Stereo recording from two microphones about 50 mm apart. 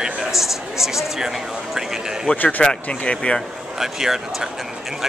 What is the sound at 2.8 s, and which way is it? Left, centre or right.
Speech, left.